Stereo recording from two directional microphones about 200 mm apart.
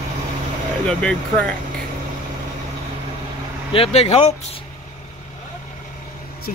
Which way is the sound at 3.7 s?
30° left (ahead or behind).